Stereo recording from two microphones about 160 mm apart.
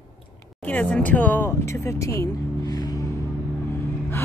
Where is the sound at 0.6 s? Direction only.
10° left (ahead or behind).